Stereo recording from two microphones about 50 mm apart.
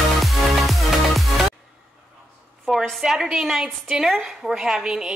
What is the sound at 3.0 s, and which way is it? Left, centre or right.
A woman's voice, centre.